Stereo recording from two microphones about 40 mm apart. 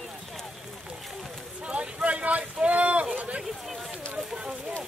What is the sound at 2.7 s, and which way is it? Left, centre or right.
Speech, right.